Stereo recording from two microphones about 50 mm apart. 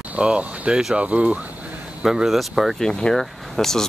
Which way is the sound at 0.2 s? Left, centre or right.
Right.